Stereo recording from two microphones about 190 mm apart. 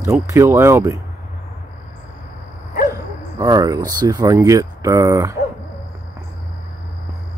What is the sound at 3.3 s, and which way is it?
Speech, 20° right (ahead or behind).